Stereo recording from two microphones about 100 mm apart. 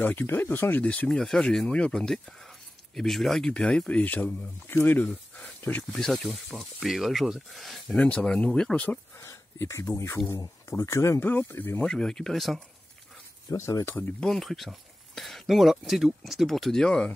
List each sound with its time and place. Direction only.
0.0 s speech: 20° left (ahead or behind)
5.9 s speech: 5° left (ahead or behind)
7.9 s speech: 10° left (ahead or behind)
9.6 s speech: 25° left (ahead or behind)
11.8 s speech: 10° left (ahead or behind)
13.5 s speech: 30° left (ahead or behind)
14.2 s speech: 5° left (ahead or behind)